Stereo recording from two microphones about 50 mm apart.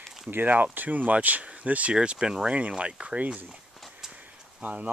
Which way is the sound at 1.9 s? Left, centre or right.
Centre.